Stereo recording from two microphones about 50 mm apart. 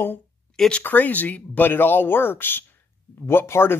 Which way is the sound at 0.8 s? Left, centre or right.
Left.